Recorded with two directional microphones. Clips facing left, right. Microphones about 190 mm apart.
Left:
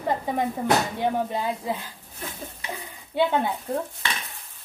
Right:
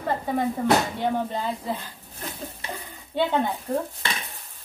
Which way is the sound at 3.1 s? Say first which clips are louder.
Left 2 dB; 10° left (ahead or behind).